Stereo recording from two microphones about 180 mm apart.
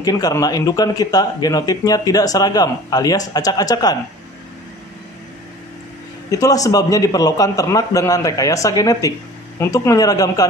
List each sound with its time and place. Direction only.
0.0 s a man's voice: 20° left (ahead or behind)
6.3 s a man's voice: 20° left (ahead or behind)